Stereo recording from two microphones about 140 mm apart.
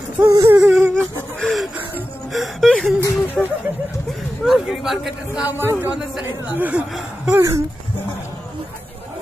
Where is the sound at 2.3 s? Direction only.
Centre (ahead or behind); by 7.6 s 20° right (ahead or behind).